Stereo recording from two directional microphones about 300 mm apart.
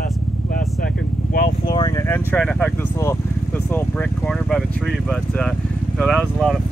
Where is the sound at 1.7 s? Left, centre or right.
Centre.